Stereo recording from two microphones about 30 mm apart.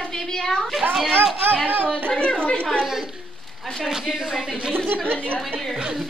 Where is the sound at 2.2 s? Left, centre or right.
Left.